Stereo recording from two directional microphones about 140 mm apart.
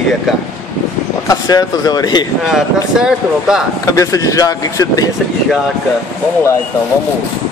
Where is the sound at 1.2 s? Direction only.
25° left (ahead or behind).